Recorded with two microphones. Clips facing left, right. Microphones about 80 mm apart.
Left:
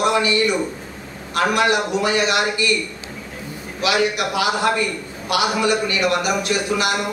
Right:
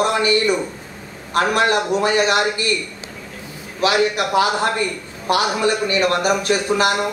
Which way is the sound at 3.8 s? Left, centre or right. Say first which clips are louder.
Right 2 dB; right.